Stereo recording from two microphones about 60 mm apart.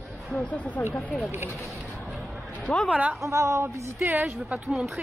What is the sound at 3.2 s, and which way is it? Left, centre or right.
Speech, right.